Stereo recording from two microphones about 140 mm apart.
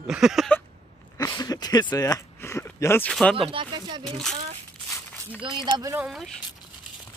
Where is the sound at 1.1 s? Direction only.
25° left (ahead or behind).